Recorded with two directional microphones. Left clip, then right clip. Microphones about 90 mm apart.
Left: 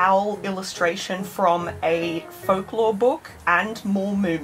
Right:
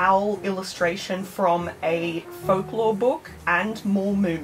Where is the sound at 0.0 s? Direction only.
25° left (ahead or behind).